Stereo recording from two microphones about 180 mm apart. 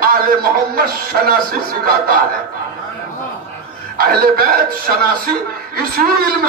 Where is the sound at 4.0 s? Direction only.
55° right (ahead or behind).